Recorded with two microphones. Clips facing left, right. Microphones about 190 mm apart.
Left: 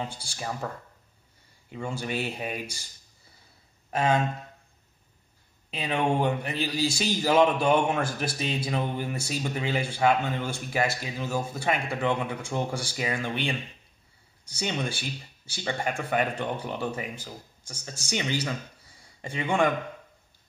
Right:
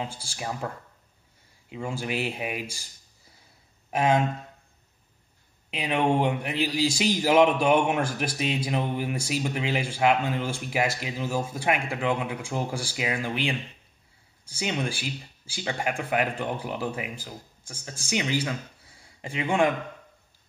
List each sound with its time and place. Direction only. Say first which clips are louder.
0.0 s speech: right 1 dB; 5° right (ahead or behind)
1.7 s speech: right 1 dB; 5° right (ahead or behind)
3.9 s a sound: right 2 dB; 15° right (ahead or behind)
5.7 s speech: right 2 dB; 10° right (ahead or behind)
14.6 s speech: right 1 dB; 5° right (ahead or behind)
19.2 s speech: right 1 dB; 5° right (ahead or behind)